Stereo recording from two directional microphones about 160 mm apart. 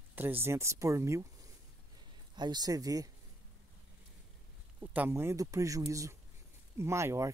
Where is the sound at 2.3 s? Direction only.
25° right (ahead or behind).